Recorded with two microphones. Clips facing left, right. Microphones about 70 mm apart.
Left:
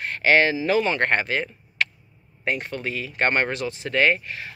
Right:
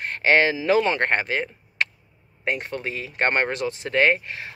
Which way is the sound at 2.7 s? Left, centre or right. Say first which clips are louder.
Left 1 dB; right.